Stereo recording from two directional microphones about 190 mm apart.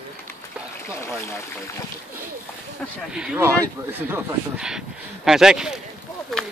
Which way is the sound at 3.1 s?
5° right (ahead or behind).